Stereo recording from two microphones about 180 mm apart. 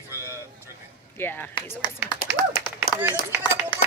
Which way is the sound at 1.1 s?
10° left (ahead or behind).